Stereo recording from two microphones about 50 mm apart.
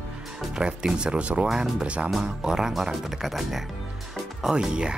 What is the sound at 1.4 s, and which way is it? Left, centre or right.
Speech, centre.